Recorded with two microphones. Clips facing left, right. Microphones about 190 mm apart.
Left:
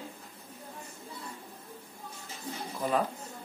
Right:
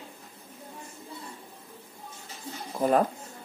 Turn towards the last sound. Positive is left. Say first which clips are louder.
# right 6 dB
turn(degrees=-50)  # may be behind; listen again after turning